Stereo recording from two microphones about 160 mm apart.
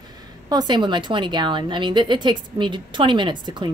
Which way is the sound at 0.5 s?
25° right (ahead or behind).